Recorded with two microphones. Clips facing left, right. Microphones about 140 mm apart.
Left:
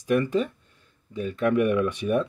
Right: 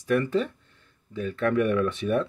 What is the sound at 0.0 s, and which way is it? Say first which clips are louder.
Speech: left 1 dB; 15° left (ahead or behind).